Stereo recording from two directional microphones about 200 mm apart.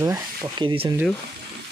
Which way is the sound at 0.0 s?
15° right (ahead or behind).